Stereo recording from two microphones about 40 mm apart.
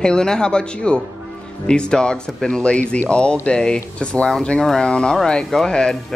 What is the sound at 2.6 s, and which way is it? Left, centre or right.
Speech, left.